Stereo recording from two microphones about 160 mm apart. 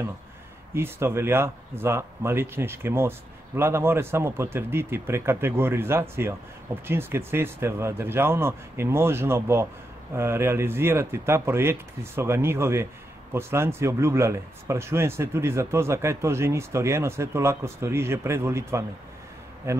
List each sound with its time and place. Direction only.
0.7 s a man's voice: 15° right (ahead or behind)